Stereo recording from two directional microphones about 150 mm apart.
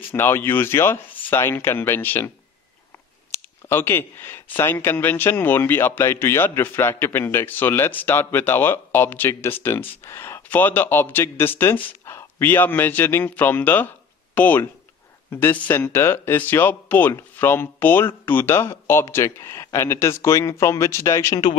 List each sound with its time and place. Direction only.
0.1 s speech: 15° left (ahead or behind)